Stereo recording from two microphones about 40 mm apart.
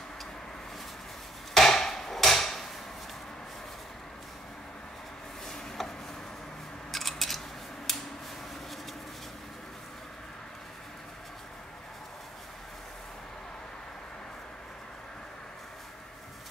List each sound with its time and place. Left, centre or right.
1.5 s hammer: centre
5.8 s a sound: centre
6.9 s scissors: centre